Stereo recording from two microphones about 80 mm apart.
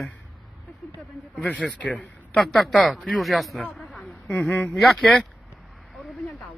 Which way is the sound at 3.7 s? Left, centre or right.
Centre.